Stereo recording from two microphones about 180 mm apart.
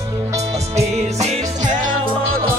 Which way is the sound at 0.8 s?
35° right (ahead or behind).